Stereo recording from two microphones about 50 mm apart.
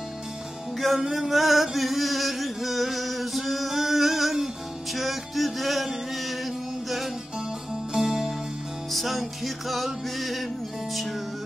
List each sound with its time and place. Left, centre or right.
0.7 s music: centre
7.9 s music: centre